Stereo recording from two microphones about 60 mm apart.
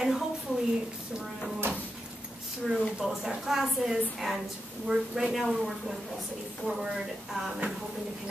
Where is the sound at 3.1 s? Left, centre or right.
Centre.